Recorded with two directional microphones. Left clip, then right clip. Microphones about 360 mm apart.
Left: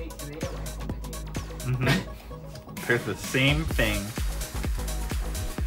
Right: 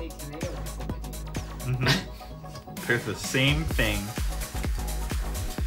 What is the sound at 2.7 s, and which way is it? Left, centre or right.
Music, centre.